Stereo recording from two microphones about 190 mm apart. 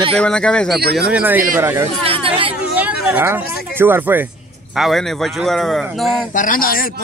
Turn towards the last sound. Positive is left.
turn(degrees=50)  # may be behind; listen again after turning